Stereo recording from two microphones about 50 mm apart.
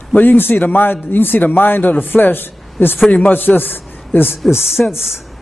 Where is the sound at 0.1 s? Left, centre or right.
Left.